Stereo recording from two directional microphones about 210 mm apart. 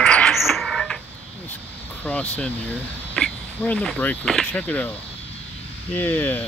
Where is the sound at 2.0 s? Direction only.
5° left (ahead or behind).